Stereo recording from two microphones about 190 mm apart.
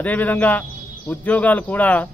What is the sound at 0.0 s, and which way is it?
Speech, 10° left (ahead or behind).